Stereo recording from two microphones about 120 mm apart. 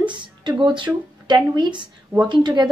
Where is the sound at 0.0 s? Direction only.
40° right (ahead or behind).